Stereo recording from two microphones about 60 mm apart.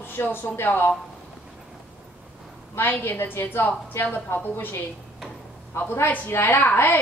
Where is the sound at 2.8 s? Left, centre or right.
Left.